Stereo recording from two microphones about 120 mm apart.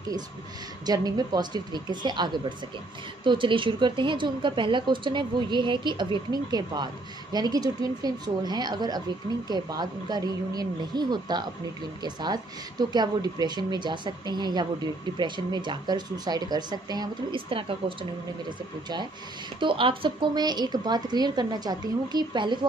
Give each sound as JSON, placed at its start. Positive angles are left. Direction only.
{"t": 0.8, "sound": "a woman's voice", "side_deg": -35}
{"t": 17.5, "sound": "speech", "side_deg": -45}
{"t": 19.6, "sound": "a woman's voice", "side_deg": -45}